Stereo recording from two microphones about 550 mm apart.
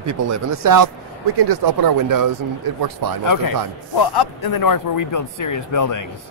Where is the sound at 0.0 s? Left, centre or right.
Right.